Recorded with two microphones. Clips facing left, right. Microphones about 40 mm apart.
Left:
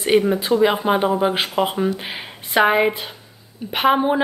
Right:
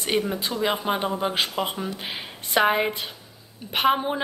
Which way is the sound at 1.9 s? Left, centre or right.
Centre.